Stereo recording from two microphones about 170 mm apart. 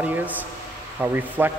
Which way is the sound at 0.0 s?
10° right (ahead or behind).